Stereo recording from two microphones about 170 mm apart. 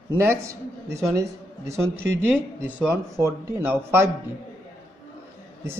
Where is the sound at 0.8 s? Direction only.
15° right (ahead or behind).